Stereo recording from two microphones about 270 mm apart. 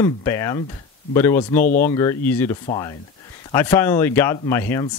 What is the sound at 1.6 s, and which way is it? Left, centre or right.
Speech, left.